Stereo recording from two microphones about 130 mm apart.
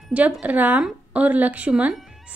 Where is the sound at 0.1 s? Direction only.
10° right (ahead or behind).